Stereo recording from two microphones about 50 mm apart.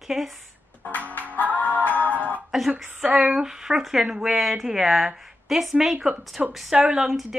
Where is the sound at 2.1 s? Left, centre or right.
Right.